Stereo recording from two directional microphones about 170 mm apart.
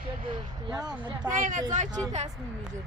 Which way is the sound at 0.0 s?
30° right (ahead or behind).